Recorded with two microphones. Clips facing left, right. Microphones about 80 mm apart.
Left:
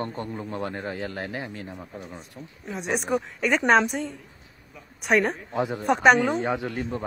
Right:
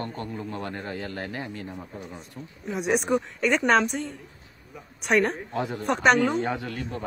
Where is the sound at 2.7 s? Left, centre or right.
Centre.